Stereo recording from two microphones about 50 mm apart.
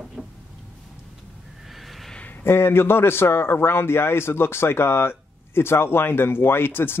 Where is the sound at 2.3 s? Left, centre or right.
Left.